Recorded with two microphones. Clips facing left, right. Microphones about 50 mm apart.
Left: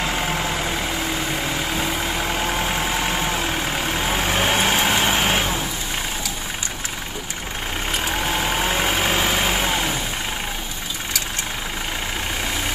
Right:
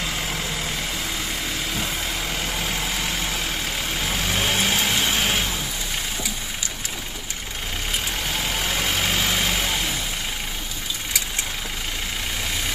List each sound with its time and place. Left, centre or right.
0.0 s vehicle: left
1.8 s vehicle: left
8.2 s vehicle: left